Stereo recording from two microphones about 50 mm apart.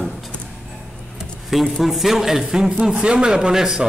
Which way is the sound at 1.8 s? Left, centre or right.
Centre.